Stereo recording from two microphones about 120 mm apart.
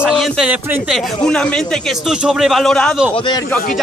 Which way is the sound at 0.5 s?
Centre (ahead or behind).